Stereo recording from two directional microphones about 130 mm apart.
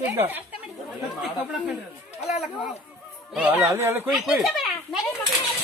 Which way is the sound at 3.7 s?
20° right (ahead or behind).